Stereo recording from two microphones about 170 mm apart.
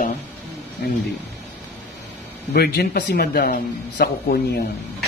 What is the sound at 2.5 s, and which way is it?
Speech, 65° left (ahead or behind).